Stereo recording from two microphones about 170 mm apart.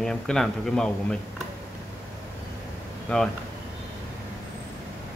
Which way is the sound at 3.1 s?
5° left (ahead or behind).